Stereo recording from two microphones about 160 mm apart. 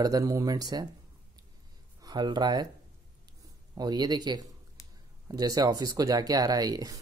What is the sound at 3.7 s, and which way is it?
Speech, 25° right (ahead or behind).